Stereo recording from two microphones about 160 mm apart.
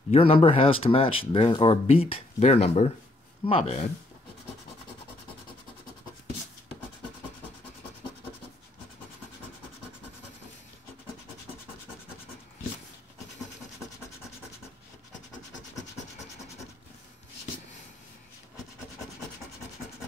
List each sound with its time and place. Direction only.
0.1 s speech: 35° left (ahead or behind)